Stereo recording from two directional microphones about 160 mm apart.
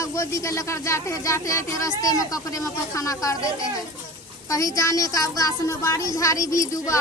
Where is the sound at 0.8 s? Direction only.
15° left (ahead or behind).